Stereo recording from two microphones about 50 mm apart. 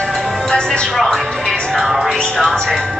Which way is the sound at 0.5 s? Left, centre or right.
Centre.